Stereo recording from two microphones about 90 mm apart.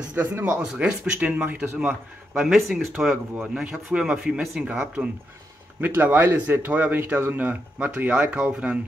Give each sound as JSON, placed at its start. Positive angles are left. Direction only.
{"t": 0.1, "sound": "a man's voice", "side_deg": -20}
{"t": 2.4, "sound": "a man's voice", "side_deg": 0}